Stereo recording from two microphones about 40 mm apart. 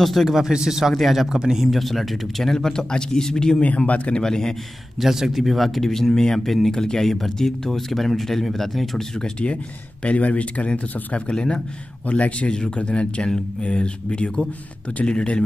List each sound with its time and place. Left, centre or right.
0.0 s speech: centre
0.4 s speech: centre
1.3 s speech: centre
1.7 s speech: centre
3.6 s a man's voice: left
4.2 s speech: centre
5.0 s speech: centre
10.0 s a man's voice: left
12.1 s speech: left